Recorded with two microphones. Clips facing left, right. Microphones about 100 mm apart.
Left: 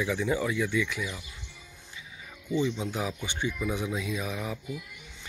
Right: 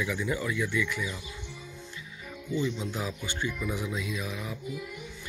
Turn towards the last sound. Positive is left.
turn(degrees=25)  # may be behind; listen again after turning